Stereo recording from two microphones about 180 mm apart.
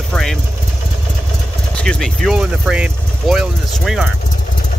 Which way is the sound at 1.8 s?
5° left (ahead or behind).